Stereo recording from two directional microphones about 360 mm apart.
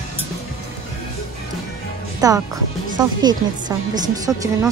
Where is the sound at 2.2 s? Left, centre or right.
Centre.